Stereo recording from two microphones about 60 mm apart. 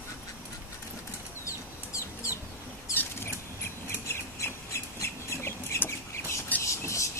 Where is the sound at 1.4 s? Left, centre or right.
Left.